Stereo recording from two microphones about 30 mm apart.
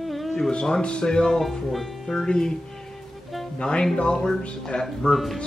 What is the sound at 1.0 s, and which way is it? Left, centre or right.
Speech, left.